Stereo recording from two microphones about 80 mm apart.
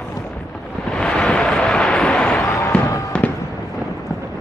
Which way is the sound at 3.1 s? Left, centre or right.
Centre.